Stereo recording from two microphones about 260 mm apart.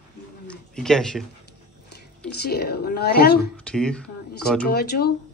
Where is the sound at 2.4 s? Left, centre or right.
Left.